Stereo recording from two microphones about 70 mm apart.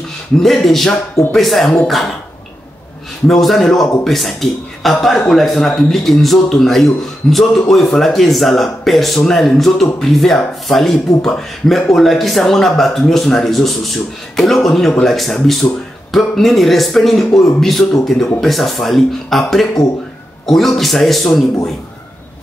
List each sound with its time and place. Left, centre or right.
0.4 s a man's voice: centre
3.3 s a man's voice: centre